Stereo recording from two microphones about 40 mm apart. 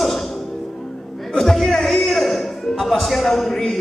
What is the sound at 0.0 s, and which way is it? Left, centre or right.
Music, centre.